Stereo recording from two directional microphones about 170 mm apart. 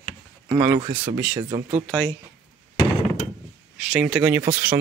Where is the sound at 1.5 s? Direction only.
35° right (ahead or behind).